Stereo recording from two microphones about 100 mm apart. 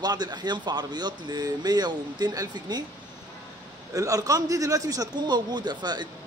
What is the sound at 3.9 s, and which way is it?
A man's voice, 35° right (ahead or behind).